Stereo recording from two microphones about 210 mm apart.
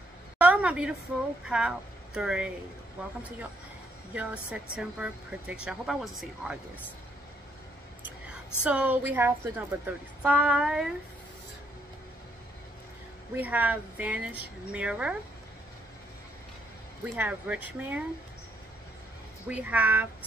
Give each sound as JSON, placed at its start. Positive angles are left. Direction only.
{"t": 0.4, "sound": "a sound", "side_deg": -5}
{"t": 1.4, "sound": "speech", "side_deg": -5}
{"t": 8.6, "sound": "speech", "side_deg": -5}
{"t": 13.4, "sound": "speech", "side_deg": -10}
{"t": 17.1, "sound": "speech", "side_deg": -5}
{"t": 19.4, "sound": "speech", "side_deg": -5}